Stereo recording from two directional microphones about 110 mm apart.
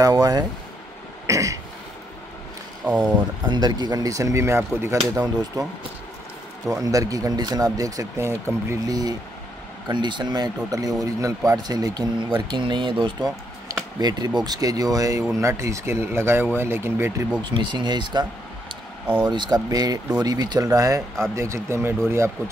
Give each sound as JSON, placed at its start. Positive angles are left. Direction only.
{"t": 0.0, "sound": "speech", "side_deg": -35}
{"t": 1.2, "sound": "throat clearing", "side_deg": -30}
{"t": 2.8, "sound": "speech", "side_deg": -10}
{"t": 3.4, "sound": "speech", "side_deg": -40}
{"t": 5.2, "sound": "speech", "side_deg": -35}
{"t": 6.8, "sound": "speech", "side_deg": -30}
{"t": 9.8, "sound": "speech", "side_deg": -45}
{"t": 17.4, "sound": "speech", "side_deg": -45}
{"t": 19.2, "sound": "speech", "side_deg": -40}